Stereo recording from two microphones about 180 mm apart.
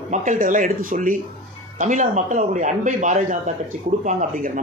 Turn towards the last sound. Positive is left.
turn(degrees=-50)  # may be behind; listen again after turning